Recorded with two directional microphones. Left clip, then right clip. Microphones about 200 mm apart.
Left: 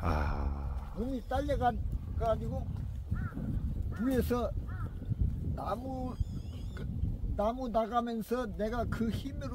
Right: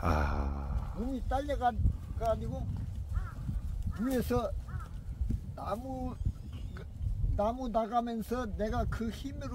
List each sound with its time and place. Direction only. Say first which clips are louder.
0.0 s a sound: right 3 dB; 20° right (ahead or behind)
1.1 s speech: even; 10° left (ahead or behind)
3.9 s speech: even; 10° right (ahead or behind)
5.6 s speech: left 1 dB; 10° right (ahead or behind)
7.3 s speech: even; 5° right (ahead or behind)